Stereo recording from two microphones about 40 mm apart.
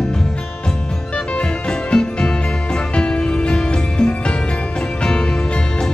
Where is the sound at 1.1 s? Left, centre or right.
Left.